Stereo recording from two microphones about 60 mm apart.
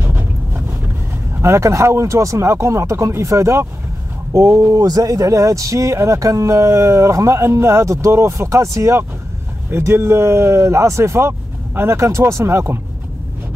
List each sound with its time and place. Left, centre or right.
0.0 s boat: right
1.4 s speech: right
9.7 s speech: right